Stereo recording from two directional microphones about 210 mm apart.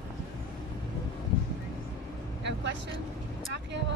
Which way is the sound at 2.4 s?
55° right (ahead or behind).